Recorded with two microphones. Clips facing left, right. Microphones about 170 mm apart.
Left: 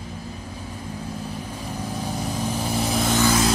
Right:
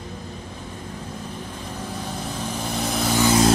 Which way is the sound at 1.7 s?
10° left (ahead or behind).